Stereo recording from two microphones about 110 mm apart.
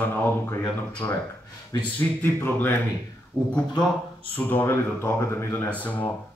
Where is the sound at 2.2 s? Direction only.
20° left (ahead or behind).